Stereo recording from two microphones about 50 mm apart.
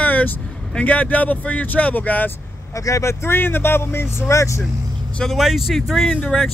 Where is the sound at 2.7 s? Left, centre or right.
Left.